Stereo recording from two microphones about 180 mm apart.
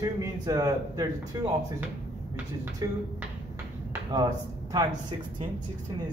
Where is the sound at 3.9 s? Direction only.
20° right (ahead or behind).